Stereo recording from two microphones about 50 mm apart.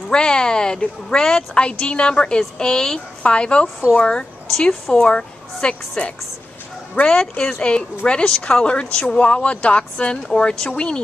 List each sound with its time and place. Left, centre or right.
0.1 s a woman's voice: centre